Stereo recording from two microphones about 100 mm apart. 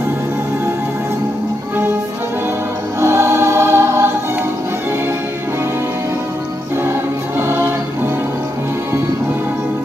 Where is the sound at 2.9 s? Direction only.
25° right (ahead or behind).